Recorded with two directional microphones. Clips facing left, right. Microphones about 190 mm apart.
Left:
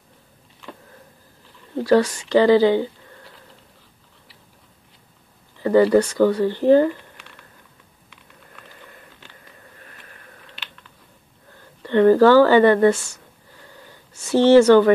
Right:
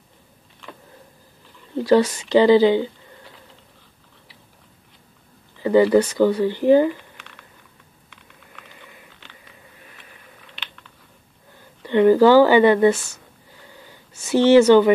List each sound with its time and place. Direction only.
1.9 s speech: 20° right (ahead or behind)
5.6 s a sound: 15° right (ahead or behind)
5.9 s speech: 15° right (ahead or behind)
11.8 s speech: 15° right (ahead or behind)
14.5 s speech: 15° right (ahead or behind)